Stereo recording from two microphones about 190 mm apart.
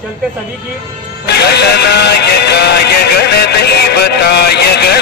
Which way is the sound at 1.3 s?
60° left (ahead or behind).